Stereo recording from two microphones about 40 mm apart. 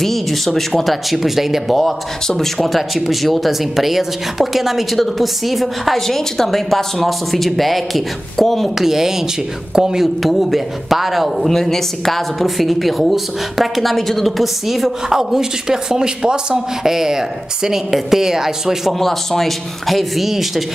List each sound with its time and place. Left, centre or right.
0.0 s a woman's voice: centre
0.8 s a woman's voice: centre
11.4 s a woman's voice: centre
18.9 s a woman's voice: centre